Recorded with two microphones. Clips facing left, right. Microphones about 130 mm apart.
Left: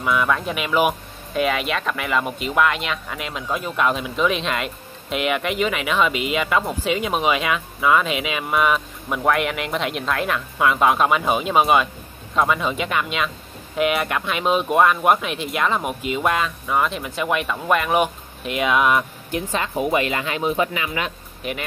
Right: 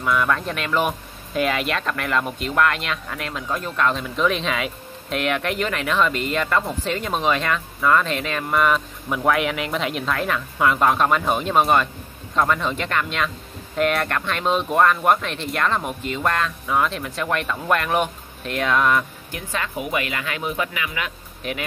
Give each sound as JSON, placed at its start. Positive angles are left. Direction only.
{"t": 0.0, "sound": "speech", "side_deg": 5}
{"t": 18.9, "sound": "speech", "side_deg": 25}
{"t": 21.4, "sound": "speech", "side_deg": 0}